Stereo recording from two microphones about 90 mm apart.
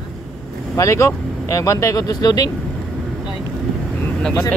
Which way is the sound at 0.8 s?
35° left (ahead or behind).